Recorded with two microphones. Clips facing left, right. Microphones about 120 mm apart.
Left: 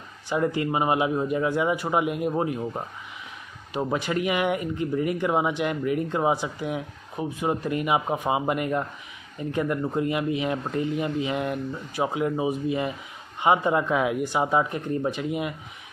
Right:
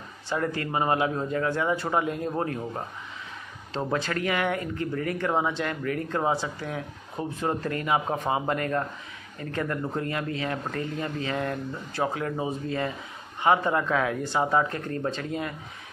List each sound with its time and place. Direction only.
0.3 s speech: 15° left (ahead or behind)